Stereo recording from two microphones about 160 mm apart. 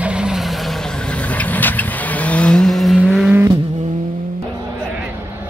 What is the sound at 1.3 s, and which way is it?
Vehicle, 10° left (ahead or behind).